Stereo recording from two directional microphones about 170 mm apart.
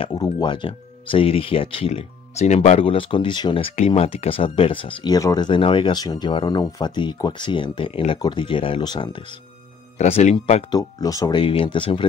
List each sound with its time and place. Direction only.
0.0 s speech: 25° left (ahead or behind)
10.8 s speech: 20° left (ahead or behind)